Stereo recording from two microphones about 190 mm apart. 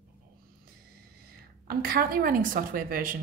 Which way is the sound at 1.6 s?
50° right (ahead or behind).